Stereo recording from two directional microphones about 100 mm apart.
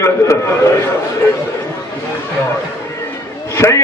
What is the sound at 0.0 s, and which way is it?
Speech, 30° left (ahead or behind).